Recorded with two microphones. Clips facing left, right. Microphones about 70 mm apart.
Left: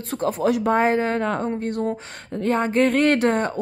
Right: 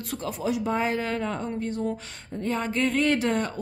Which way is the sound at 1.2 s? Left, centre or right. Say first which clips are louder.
Left 6 dB; left.